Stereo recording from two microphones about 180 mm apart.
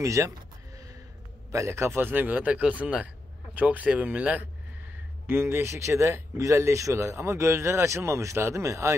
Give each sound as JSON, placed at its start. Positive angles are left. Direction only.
{"t": 0.0, "sound": "speech", "side_deg": -15}
{"t": 1.5, "sound": "speech", "side_deg": -15}